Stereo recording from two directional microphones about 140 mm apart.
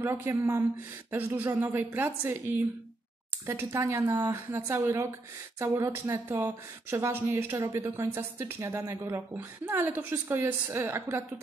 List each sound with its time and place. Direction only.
0.0 s speech: 15° right (ahead or behind)